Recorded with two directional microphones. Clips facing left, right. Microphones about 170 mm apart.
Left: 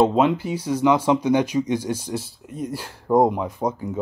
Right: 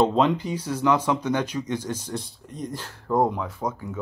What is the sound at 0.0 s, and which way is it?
Speech, 10° left (ahead or behind).